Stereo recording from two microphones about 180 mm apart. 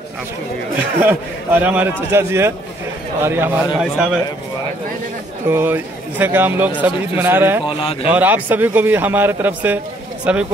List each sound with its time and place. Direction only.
0.7 s a man's voice: 10° right (ahead or behind)
5.5 s a man's voice: 10° right (ahead or behind)
7.6 s speech: 30° left (ahead or behind)
8.1 s a man's voice: 10° right (ahead or behind)